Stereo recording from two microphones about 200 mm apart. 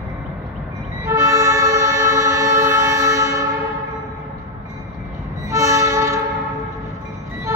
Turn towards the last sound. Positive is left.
turn(degrees=-15)  # may be behind; listen again after turning